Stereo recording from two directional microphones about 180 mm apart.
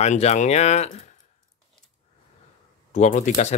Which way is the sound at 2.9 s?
40° left (ahead or behind).